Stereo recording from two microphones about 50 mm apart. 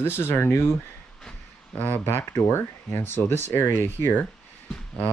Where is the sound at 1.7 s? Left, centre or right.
Left.